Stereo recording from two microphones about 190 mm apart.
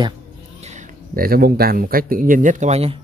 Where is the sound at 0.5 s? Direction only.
35° right (ahead or behind).